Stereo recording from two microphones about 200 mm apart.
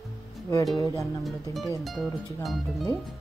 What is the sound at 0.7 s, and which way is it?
Speech, 15° left (ahead or behind).